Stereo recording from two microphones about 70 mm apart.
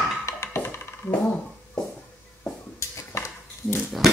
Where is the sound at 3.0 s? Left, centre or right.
Left.